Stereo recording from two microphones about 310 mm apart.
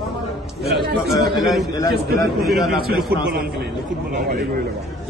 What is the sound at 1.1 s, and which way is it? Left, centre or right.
A man's voice, centre.